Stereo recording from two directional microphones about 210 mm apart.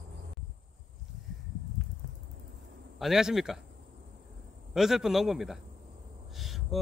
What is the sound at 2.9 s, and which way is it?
Speech, centre (ahead or behind).